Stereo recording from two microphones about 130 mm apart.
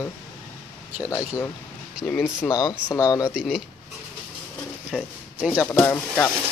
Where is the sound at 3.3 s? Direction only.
5° right (ahead or behind).